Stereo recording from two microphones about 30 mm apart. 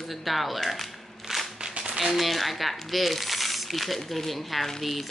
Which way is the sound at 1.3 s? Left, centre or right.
Centre.